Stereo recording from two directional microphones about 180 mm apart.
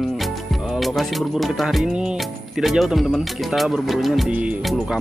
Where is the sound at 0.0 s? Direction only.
Centre (ahead or behind).